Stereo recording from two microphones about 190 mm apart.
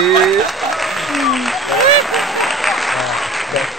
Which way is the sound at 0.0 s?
Centre (ahead or behind).